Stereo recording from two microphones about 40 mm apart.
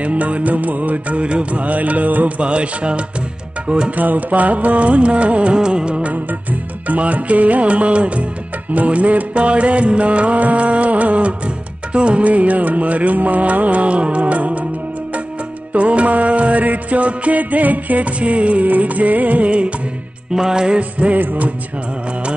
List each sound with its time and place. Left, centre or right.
0.0 s music: right
3.9 s music: right
6.9 s music: right
15.7 s music: right
20.3 s music: centre
21.2 s music: right